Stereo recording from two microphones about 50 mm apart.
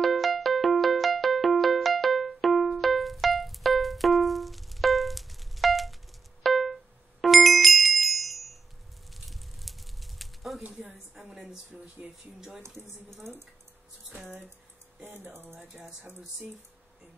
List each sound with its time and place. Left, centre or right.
0.0 s music: centre
6.4 s bicycle bell: centre
9.2 s a sound: centre
10.7 s a sound: centre
11.7 s speech: right
12.4 s speech: centre
13.1 s speech: right
15.1 s speech: right